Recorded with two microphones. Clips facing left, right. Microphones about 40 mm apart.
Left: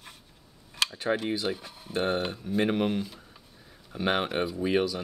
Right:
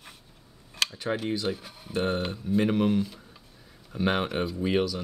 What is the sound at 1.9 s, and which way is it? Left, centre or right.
Speech, centre.